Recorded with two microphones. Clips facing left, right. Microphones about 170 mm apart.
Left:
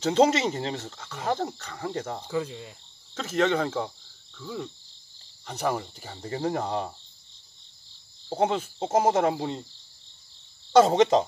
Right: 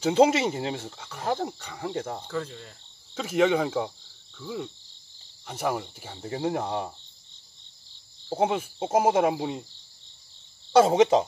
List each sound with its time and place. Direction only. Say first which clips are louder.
0.0 s speech: right 1 dB; 10° right (ahead or behind)
2.2 s cricket: left 3 dB; 10° left (ahead or behind)
3.2 s speech: right 2 dB; 10° right (ahead or behind)
8.3 s speech: even; 5° right (ahead or behind)
10.7 s speech: even; 5° right (ahead or behind)